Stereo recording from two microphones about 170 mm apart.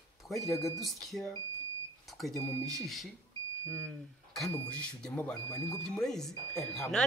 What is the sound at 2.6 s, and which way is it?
A woman's voice, centre (ahead or behind).